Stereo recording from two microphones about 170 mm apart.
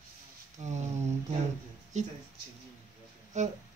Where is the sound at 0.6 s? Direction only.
45° right (ahead or behind).